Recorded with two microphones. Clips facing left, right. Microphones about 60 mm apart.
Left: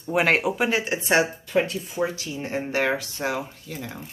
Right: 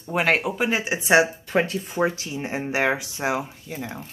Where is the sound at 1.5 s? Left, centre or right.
Right.